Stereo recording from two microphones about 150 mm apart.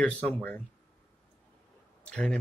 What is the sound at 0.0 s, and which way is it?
Speech, 10° left (ahead or behind).